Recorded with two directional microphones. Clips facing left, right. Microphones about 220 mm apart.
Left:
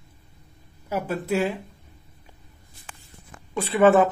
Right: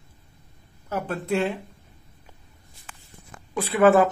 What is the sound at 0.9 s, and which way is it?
Speech, 10° left (ahead or behind).